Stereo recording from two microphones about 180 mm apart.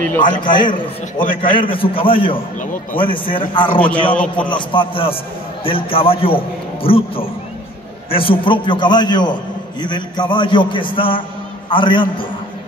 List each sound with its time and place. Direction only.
0.2 s a man's voice: 25° left (ahead or behind)
3.8 s a man's voice: 10° left (ahead or behind)
4.5 s a man's voice: 25° left (ahead or behind)